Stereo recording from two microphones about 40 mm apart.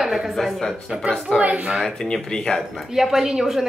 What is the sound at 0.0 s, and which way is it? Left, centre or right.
A woman's voice, centre.